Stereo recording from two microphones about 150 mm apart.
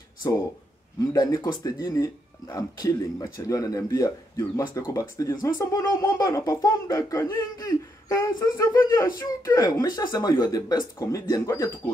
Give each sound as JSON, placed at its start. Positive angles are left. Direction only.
{"t": 1.1, "sound": "speech", "side_deg": 25}